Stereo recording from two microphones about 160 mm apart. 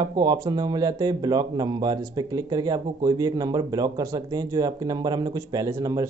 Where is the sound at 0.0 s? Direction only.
25° right (ahead or behind).